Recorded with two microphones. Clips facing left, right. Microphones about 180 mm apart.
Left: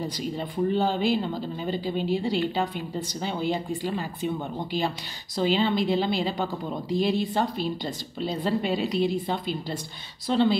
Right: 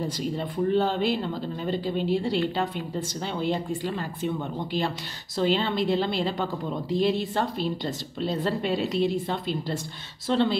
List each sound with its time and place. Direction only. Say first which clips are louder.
0.4 s a woman's voice: right 1 dB; 5° left (ahead or behind)
6.9 s a woman's voice: even; 25° right (ahead or behind)
7.3 s a woman's voice: even; 5° left (ahead or behind)